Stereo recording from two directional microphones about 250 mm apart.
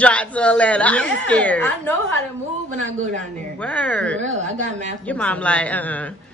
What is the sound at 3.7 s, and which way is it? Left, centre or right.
A woman's voice, centre.